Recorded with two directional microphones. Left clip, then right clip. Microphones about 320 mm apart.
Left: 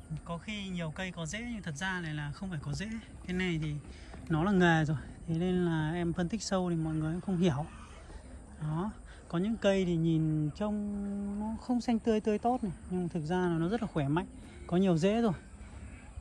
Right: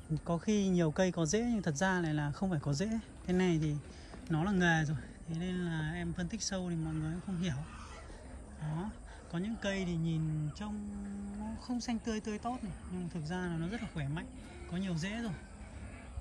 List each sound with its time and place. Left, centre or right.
0.1 s speech: centre
8.7 s speech: centre